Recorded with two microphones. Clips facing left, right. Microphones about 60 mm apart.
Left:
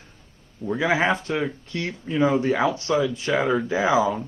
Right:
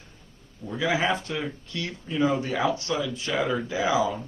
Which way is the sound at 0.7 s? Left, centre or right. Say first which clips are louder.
Left 4 dB; left.